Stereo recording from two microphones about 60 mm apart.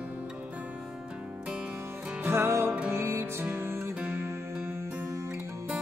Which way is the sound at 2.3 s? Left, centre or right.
Right.